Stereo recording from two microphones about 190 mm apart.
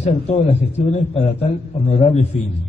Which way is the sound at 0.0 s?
35° left (ahead or behind).